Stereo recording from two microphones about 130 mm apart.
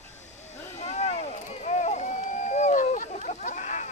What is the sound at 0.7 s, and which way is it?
Vehicle, 60° left (ahead or behind).